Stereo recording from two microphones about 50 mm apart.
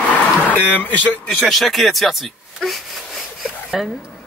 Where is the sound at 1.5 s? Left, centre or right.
Centre.